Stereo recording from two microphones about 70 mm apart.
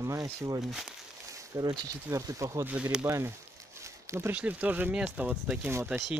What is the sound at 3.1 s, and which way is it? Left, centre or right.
Speech, right.